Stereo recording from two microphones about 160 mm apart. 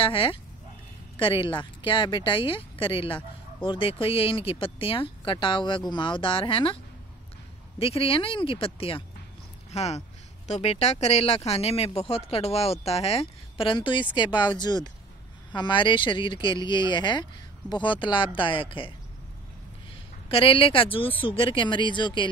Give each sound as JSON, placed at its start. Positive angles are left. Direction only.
{"t": 0.0, "sound": "speech", "side_deg": 35}
{"t": 7.8, "sound": "speech", "side_deg": 35}
{"t": 20.2, "sound": "speech", "side_deg": 35}